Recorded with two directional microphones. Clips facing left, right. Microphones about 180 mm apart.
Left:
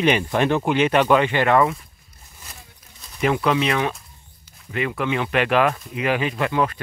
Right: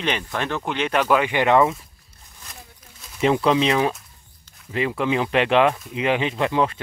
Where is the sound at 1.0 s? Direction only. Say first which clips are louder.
Left 2 dB; 5° right (ahead or behind).